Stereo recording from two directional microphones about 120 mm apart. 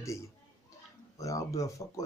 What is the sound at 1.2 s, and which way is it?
Speech, 25° left (ahead or behind).